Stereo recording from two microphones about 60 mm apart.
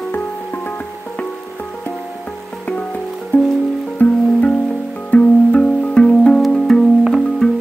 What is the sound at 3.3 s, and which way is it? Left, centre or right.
Music, left.